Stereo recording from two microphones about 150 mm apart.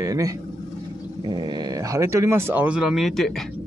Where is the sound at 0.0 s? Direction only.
20° right (ahead or behind); by 3.4 s centre (ahead or behind).